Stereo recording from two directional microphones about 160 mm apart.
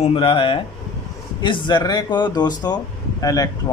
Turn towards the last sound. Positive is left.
turn(degrees=20)  # may be behind; listen again after turning